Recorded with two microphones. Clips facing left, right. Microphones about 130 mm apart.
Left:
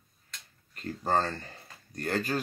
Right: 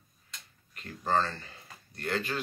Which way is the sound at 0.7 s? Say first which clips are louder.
Left 1 dB; 45° left (ahead or behind).